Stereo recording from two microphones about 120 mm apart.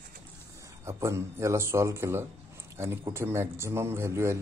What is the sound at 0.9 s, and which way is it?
A man's voice, 25° right (ahead or behind).